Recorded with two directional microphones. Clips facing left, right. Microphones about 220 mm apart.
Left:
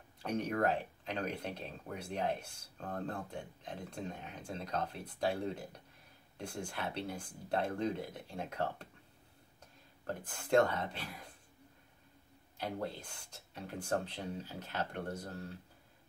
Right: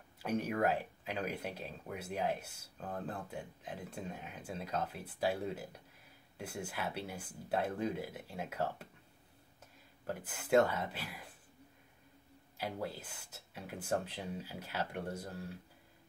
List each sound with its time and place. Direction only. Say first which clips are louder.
0.2 s speech: even; 5° right (ahead or behind)
10.0 s speech: even; 5° right (ahead or behind)
12.5 s speech: left 1 dB; 5° right (ahead or behind)